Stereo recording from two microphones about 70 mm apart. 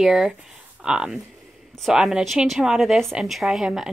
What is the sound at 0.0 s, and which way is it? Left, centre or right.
A woman's voice, centre.